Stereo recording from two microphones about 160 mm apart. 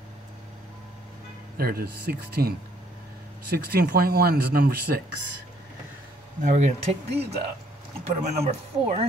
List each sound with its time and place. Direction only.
1.6 s speech: 70° right (ahead or behind)
6.4 s speech: 50° right (ahead or behind)